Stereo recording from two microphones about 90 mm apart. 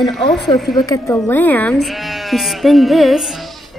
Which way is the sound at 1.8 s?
Centre (ahead or behind).